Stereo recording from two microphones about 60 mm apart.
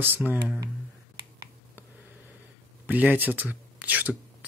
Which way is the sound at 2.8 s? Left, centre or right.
Right.